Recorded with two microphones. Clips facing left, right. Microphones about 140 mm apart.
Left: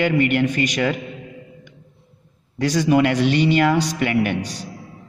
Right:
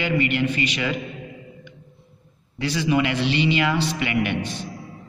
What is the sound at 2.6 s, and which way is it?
A man's voice, 45° left (ahead or behind).